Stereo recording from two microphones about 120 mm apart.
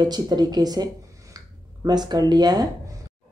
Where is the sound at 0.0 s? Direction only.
35° right (ahead or behind).